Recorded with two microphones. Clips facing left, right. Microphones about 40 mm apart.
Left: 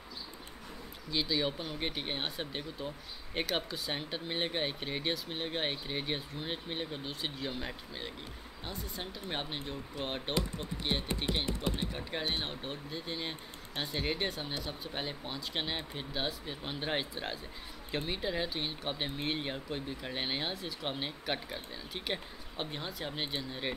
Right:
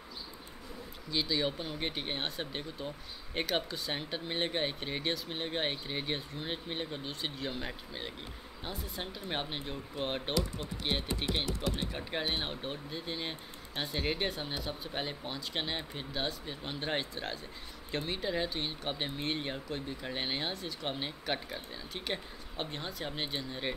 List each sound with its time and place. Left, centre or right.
1.1 s speech: centre
11.9 s speech: centre